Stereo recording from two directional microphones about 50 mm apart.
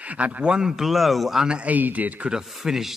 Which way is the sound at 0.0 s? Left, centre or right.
Right.